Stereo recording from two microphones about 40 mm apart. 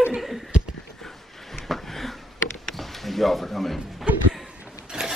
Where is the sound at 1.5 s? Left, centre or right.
Centre.